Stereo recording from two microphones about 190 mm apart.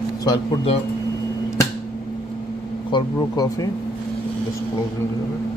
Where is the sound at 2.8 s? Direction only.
20° left (ahead or behind).